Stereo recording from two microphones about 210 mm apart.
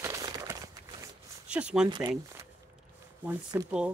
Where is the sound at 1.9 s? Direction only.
20° right (ahead or behind).